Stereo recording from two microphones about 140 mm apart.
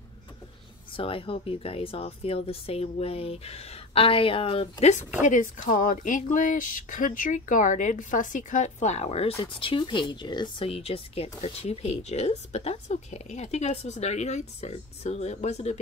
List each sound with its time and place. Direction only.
0.9 s speech: 40° left (ahead or behind)
5.2 s speech: 65° left (ahead or behind)